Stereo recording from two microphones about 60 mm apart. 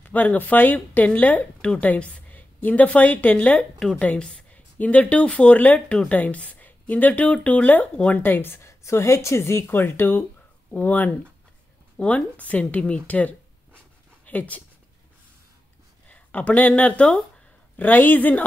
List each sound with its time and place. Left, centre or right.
0.0 s a woman's voice: left
8.2 s speech: left
8.6 s a woman's voice: left
9.7 s a woman's voice: left
16.1 s a woman's voice: left